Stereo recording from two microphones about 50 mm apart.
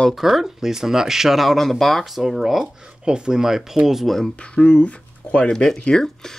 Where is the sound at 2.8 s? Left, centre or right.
Centre.